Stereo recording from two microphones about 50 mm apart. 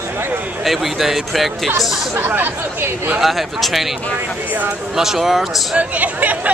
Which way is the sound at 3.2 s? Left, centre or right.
Centre.